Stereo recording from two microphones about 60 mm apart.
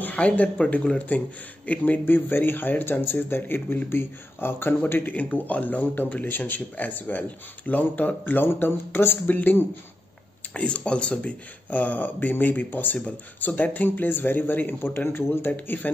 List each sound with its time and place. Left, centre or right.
0.0 s speech: left